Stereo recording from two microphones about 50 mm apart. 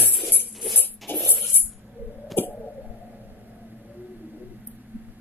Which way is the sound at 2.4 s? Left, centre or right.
Left.